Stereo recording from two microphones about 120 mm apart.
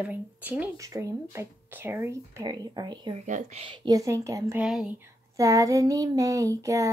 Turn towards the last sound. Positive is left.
turn(degrees=-25)  # may be behind; listen again after turning